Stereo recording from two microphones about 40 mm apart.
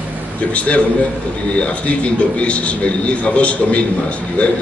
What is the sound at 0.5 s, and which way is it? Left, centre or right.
A man's voice, left.